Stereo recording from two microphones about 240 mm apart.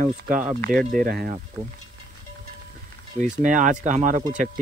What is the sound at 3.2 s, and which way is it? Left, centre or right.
Speech, right.